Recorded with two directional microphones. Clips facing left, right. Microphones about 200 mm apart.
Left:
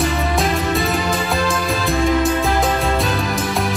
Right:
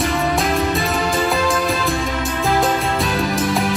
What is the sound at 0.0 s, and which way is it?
Music, centre (ahead or behind).